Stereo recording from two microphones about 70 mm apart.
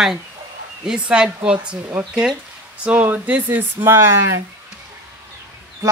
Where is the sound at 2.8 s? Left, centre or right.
Right.